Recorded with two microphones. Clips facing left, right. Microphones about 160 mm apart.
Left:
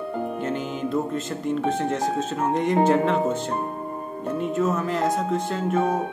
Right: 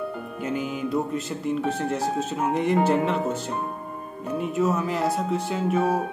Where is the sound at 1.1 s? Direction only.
5° right (ahead or behind).